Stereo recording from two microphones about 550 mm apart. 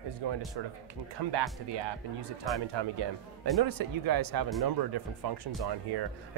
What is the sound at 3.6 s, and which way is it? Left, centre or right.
Speech, right.